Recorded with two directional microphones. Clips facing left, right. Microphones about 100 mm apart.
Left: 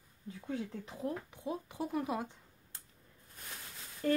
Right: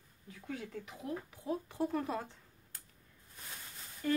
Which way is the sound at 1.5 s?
15° left (ahead or behind).